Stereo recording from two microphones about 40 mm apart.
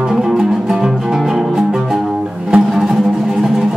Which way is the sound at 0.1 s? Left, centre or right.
Centre.